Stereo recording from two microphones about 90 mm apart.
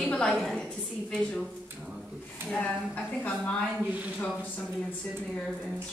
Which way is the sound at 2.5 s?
15° left (ahead or behind).